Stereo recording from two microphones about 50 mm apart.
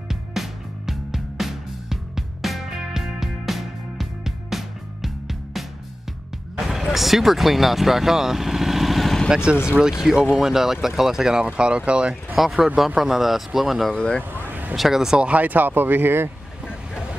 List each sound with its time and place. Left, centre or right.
0.1 s music: centre
6.7 s speech: centre
9.3 s speech: centre
11.4 s speech: right
12.4 s a man's voice: centre
13.8 s speech: centre
14.5 s vehicle: right
14.8 s speech: centre
15.1 s speech: right